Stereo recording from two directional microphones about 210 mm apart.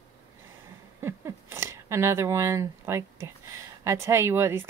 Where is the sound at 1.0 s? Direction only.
10° right (ahead or behind).